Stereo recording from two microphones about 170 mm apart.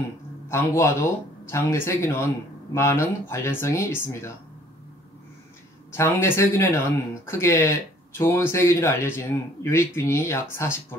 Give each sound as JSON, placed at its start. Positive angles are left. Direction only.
{"t": 0.5, "sound": "speech", "side_deg": 15}
{"t": 5.9, "sound": "speech", "side_deg": 15}